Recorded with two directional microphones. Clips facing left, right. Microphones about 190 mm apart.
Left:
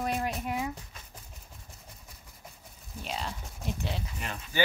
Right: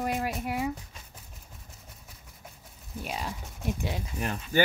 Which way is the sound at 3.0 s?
10° right (ahead or behind).